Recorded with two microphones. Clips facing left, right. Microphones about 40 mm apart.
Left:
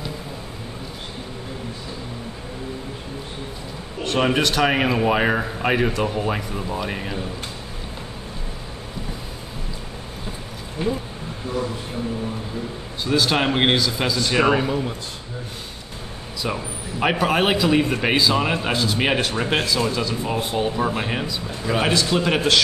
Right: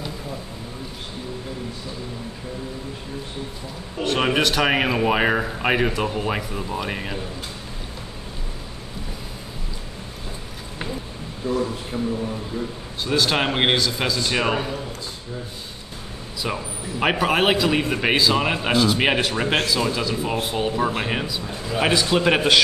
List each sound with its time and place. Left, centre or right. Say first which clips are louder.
4.0 s speech: even; centre
13.0 s a man's voice: left 1 dB; centre
14.7 s a man's voice: left 6 dB; left
16.4 s a man's voice: left 1 dB; centre